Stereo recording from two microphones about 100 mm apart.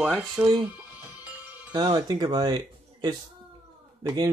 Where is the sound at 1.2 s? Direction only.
15° right (ahead or behind).